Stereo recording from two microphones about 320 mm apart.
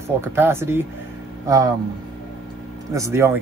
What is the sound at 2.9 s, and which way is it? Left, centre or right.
Speech, centre.